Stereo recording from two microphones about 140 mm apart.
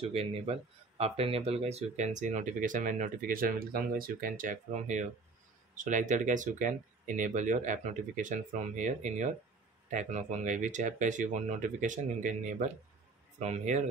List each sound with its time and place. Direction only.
0.0 s speech: 45° right (ahead or behind)